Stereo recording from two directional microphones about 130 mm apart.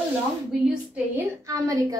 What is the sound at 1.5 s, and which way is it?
Speech, 25° right (ahead or behind).